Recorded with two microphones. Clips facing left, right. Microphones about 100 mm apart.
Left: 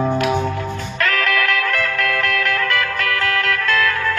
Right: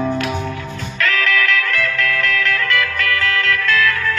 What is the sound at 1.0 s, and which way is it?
Music, 45° left (ahead or behind).